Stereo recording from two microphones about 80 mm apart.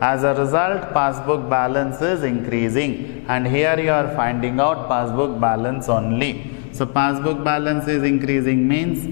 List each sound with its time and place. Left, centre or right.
0.0 s a man's voice: centre